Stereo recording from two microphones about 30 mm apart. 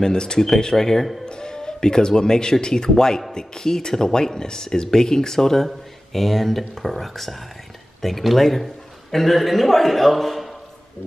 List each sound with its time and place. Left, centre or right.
0.0 s speech: left; by 10.5 s centre